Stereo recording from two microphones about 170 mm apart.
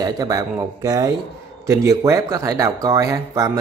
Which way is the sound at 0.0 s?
20° right (ahead or behind).